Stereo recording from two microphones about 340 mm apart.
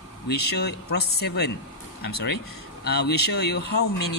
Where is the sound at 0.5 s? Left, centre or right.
Left.